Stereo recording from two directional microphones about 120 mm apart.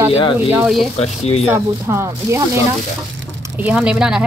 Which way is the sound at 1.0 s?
60° left (ahead or behind).